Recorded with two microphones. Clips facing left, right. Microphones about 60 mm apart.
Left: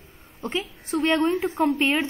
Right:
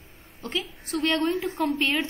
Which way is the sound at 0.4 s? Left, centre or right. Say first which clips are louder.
Left 3 dB; left.